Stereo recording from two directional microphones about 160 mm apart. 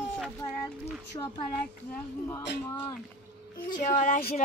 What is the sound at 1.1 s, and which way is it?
Speech, 30° left (ahead or behind).